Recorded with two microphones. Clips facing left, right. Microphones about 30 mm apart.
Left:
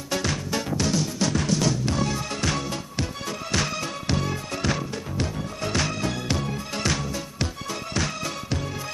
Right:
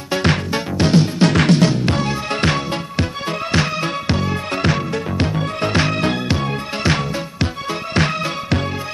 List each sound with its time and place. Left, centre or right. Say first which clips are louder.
0.1 s music: right 8 dB; right
1.3 s music: right 11 dB; right
1.8 s music: right 6 dB; right
4.5 s music: right 8 dB; right
7.9 s music: right 10 dB; right